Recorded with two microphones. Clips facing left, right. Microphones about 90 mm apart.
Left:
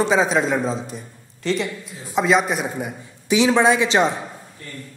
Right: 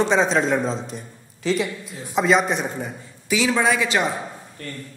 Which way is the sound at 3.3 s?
20° left (ahead or behind).